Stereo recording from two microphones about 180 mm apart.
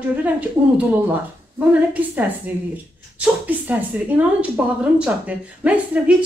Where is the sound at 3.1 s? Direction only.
5° right (ahead or behind).